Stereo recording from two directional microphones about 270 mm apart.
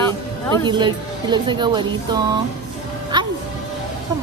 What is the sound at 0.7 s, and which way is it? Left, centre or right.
Speech, centre.